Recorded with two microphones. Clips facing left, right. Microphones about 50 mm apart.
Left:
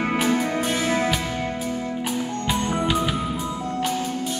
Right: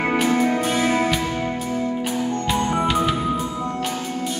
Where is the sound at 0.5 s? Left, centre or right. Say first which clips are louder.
Right 3 dB; centre.